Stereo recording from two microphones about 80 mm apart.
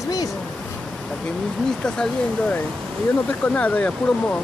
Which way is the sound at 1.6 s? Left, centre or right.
Centre.